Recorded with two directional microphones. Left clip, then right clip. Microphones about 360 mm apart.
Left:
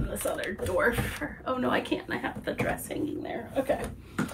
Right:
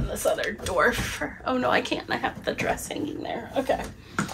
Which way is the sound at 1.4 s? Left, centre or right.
Centre.